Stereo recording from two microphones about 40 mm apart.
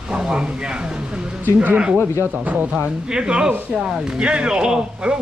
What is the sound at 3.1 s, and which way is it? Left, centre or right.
Speech, right.